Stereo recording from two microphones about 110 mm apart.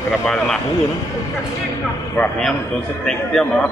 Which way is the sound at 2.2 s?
20° left (ahead or behind).